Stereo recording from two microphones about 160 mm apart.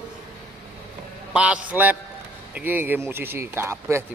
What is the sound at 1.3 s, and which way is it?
Speech, 10° right (ahead or behind).